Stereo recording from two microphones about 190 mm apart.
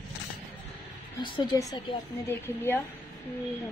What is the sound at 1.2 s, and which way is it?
Speech, 25° left (ahead or behind).